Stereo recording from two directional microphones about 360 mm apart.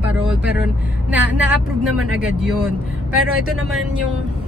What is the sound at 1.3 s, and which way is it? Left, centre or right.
Speech, centre.